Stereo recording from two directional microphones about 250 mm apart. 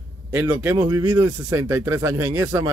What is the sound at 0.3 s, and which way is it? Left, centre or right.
Speech, centre.